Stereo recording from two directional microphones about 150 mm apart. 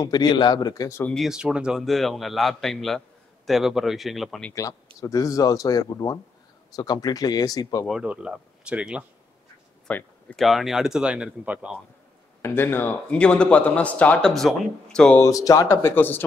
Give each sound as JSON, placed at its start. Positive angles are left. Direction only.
{"t": 0.0, "sound": "speech", "side_deg": 25}
{"t": 1.1, "sound": "speech", "side_deg": 0}
{"t": 5.0, "sound": "speech", "side_deg": 20}
{"t": 8.0, "sound": "speech", "side_deg": -5}
{"t": 9.8, "sound": "speech", "side_deg": 5}
{"t": 12.4, "sound": "speech", "side_deg": 15}
{"t": 15.2, "sound": "speech", "side_deg": 20}